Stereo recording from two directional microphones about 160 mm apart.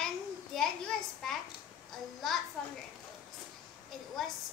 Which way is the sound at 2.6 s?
Centre (ahead or behind).